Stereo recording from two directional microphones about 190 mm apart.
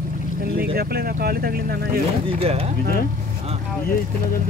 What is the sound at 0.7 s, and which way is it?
Speech, 55° right (ahead or behind).